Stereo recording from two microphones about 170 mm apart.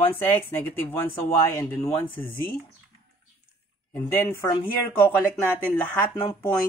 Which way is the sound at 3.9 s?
10° left (ahead or behind).